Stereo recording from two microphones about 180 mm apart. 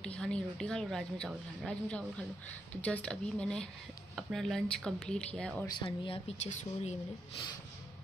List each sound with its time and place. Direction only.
0.0 s speech: 5° left (ahead or behind)
5.8 s speech: 30° left (ahead or behind)